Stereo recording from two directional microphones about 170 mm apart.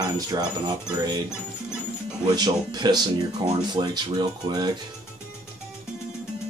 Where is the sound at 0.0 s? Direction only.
25° right (ahead or behind).